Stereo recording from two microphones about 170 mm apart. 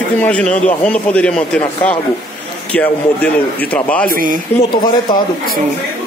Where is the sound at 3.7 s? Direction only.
5° left (ahead or behind).